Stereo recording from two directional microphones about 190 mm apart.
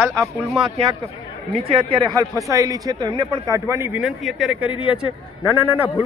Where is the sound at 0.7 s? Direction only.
30° right (ahead or behind); by 4.1 s 10° right (ahead or behind).